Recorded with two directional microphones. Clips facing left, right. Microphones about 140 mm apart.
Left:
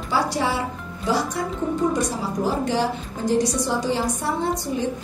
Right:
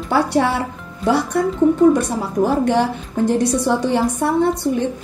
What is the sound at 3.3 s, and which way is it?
A woman's voice, 60° right (ahead or behind).